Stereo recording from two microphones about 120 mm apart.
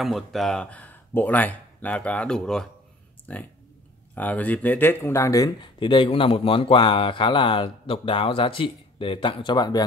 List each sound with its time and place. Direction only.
0.0 s speech: centre (ahead or behind); by 5.7 s 30° left (ahead or behind)
5.8 s speech: 45° left (ahead or behind)